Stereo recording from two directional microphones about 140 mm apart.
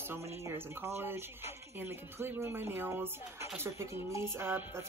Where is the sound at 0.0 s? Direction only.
15° right (ahead or behind).